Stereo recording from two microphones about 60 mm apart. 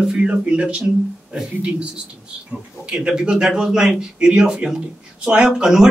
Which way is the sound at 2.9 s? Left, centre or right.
Centre.